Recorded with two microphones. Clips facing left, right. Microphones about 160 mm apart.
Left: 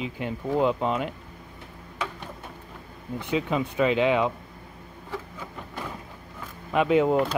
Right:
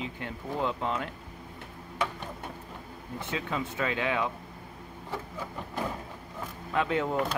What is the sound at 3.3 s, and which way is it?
Speech, 20° left (ahead or behind).